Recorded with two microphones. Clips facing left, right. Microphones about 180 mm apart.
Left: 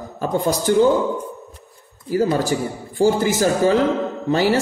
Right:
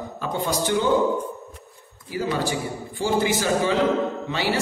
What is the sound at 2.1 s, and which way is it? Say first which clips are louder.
A man's voice: left 6 dB; 45° left (ahead or behind).